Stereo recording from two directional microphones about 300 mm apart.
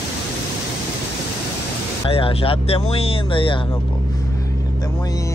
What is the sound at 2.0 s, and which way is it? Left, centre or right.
Speech, centre.